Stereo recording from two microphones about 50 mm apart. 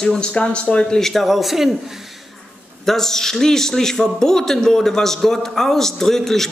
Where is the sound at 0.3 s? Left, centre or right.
Left.